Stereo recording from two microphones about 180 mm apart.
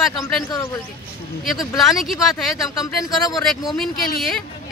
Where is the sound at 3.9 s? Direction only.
55° left (ahead or behind).